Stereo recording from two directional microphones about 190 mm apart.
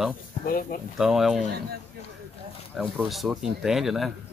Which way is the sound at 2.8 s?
Centre (ahead or behind).